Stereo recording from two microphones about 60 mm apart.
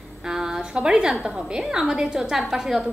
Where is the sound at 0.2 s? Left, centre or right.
Centre.